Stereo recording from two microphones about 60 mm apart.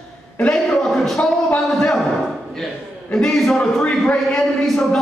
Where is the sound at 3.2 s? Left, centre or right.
Centre.